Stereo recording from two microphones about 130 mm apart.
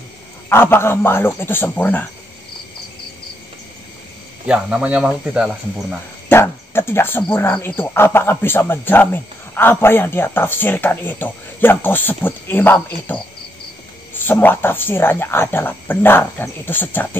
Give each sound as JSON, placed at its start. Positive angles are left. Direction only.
{"t": 0.5, "sound": "speech", "side_deg": 20}
{"t": 4.5, "sound": "speech", "side_deg": -5}
{"t": 6.2, "sound": "speech", "side_deg": 20}